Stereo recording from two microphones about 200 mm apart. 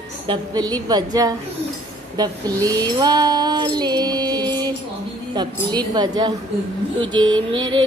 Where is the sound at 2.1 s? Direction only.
20° right (ahead or behind).